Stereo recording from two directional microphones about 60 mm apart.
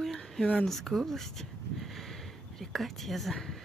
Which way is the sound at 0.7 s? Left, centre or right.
Centre.